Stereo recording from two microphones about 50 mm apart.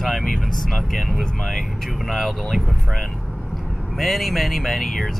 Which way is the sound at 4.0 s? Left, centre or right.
Centre.